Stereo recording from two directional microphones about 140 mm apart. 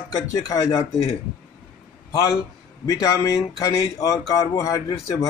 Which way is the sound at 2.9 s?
25° left (ahead or behind).